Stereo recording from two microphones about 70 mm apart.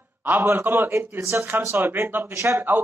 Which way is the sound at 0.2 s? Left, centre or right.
Right.